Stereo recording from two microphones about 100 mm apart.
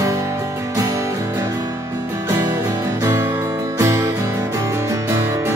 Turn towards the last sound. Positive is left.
turn(degrees=-30)  # may be behind; listen again after turning